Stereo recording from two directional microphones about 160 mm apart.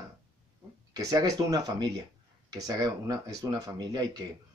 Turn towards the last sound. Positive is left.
turn(degrees=-25)  # may be behind; listen again after turning